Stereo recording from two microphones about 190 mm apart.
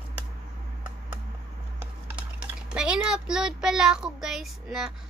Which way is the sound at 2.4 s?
5° right (ahead or behind).